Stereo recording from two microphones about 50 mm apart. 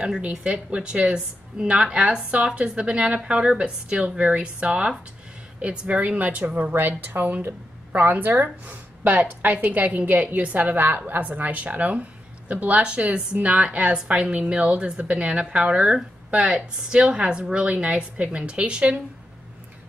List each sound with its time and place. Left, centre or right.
0.0 s a woman's voice: centre